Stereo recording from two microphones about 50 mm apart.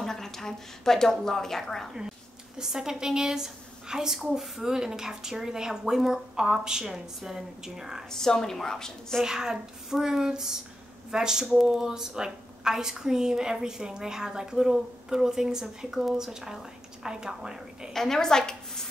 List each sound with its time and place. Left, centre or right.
0.0 s a woman's voice: centre
2.0 s a woman's voice: centre
8.1 s a woman's voice: centre
9.2 s a woman's voice: centre
17.9 s a woman's voice: centre